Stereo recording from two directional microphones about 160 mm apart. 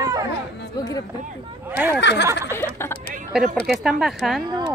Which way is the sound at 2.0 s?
90° left.